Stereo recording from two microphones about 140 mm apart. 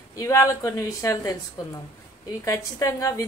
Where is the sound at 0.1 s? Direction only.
20° left (ahead or behind).